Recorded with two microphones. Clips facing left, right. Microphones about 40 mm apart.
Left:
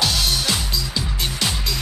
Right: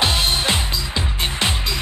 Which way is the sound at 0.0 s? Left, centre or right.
Right.